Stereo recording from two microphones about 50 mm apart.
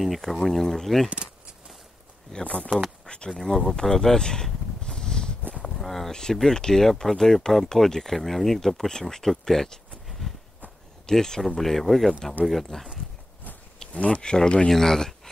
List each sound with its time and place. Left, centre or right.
0.0 s speech: centre
2.4 s speech: left
4.8 s a sound: centre
5.6 s speech: centre
10.2 s a sound: centre
11.1 s speech: centre
13.9 s speech: left